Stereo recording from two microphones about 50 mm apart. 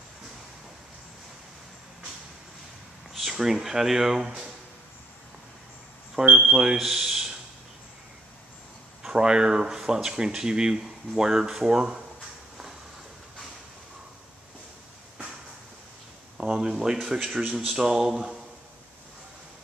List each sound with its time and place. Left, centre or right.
3.1 s speech: centre
6.1 s speech: centre
9.0 s speech: centre
16.3 s speech: centre